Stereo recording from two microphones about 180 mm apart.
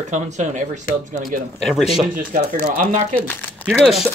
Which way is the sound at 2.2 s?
50° right (ahead or behind).